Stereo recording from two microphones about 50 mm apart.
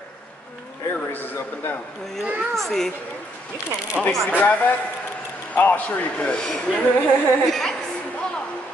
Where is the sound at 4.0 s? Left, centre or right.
Centre.